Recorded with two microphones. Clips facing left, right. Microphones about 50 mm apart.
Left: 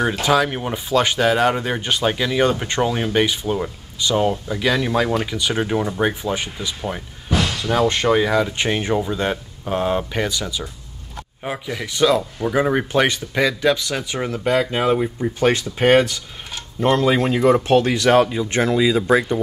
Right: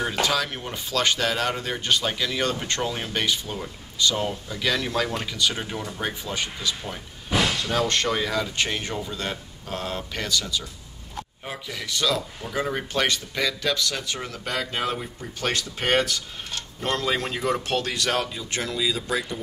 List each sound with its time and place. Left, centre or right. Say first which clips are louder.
0.2 s speech: left 7 dB; centre; by 19.4 s left